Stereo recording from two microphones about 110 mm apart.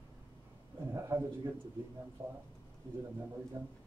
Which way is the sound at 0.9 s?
25° right (ahead or behind).